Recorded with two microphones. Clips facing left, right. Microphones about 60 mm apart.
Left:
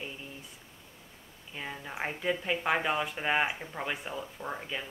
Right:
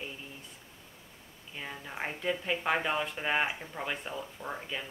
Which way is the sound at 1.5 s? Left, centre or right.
Centre.